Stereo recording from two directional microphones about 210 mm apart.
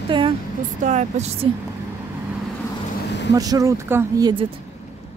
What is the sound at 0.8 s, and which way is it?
Speech, 35° right (ahead or behind).